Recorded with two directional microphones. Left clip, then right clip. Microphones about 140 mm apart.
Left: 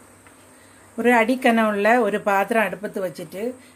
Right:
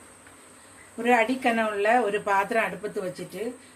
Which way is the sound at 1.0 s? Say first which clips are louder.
Left 5 dB; 90° left.